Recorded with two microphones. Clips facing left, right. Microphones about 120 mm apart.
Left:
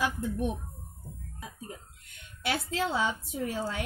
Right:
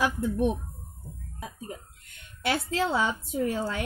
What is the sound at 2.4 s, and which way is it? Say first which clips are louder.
A woman's voice: right 3 dB; 55° right (ahead or behind).